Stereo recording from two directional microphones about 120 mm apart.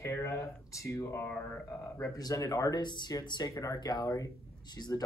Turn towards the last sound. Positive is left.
turn(degrees=30)  # may be behind; listen again after turning